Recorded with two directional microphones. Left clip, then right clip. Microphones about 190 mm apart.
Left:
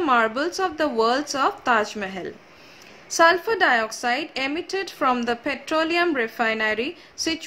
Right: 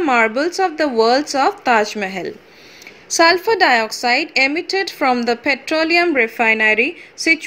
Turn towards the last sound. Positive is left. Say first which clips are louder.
# right 9 dB
turn(degrees=-15)  # may be behind; listen again after turning